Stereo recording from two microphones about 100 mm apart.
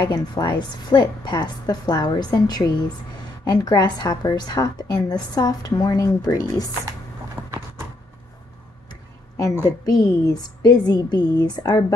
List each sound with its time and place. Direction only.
0.0 s a woman's voice: 50° left (ahead or behind)
7.4 s a sound: 15° right (ahead or behind)
9.7 s a woman's voice: 40° left (ahead or behind)